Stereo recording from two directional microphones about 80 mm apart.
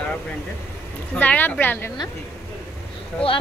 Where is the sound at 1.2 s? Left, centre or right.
Left.